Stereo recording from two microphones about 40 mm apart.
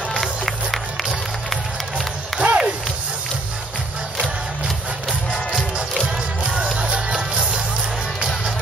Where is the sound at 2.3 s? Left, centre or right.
Centre.